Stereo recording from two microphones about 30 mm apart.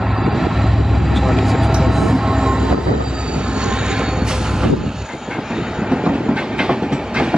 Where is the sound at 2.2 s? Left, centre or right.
Centre.